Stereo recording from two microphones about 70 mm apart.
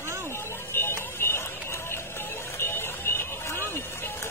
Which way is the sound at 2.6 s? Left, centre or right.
Left.